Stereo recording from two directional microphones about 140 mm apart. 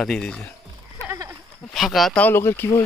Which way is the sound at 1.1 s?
20° right (ahead or behind).